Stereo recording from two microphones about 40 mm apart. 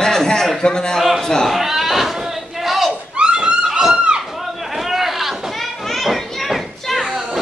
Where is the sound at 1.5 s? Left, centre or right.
Centre.